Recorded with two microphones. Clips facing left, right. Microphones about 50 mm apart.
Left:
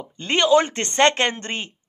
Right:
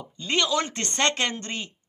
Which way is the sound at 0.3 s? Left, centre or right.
Left.